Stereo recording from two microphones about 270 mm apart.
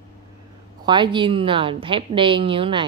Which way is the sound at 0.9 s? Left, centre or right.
Centre.